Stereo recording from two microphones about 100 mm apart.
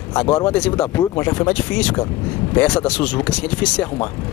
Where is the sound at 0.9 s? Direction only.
30° left (ahead or behind).